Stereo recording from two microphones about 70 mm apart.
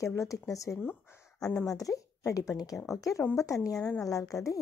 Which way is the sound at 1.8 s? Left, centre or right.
Left.